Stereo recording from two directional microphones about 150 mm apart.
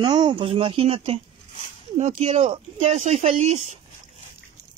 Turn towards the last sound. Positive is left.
turn(degrees=-50)  # may be behind; listen again after turning